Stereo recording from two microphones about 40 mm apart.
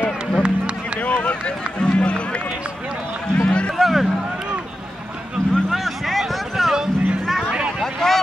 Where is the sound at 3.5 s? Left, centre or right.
Left.